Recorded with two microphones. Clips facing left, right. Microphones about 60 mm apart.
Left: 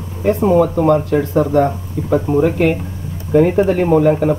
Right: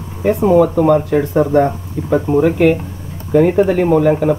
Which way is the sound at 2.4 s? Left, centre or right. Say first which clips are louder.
Right 2 dB; centre.